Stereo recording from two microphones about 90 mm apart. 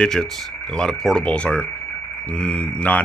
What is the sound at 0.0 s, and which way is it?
Speech, 5° left (ahead or behind).